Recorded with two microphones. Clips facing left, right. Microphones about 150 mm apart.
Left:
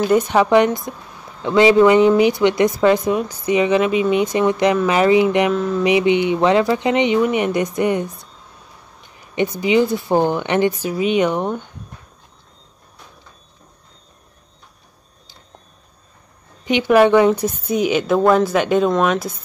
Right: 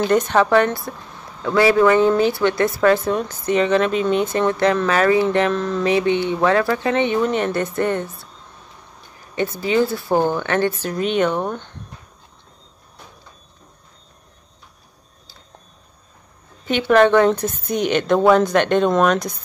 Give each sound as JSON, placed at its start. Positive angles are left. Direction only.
{"t": 0.0, "sound": "a woman's voice", "side_deg": 10}
{"t": 9.3, "sound": "a woman's voice", "side_deg": 15}
{"t": 16.6, "sound": "a woman's voice", "side_deg": 10}